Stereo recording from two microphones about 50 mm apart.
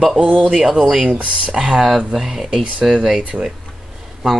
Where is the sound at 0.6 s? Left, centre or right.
Centre.